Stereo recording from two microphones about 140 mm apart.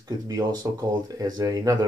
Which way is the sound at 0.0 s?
25° right (ahead or behind).